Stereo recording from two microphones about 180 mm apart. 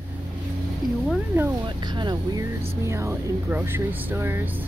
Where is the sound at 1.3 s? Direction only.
10° right (ahead or behind).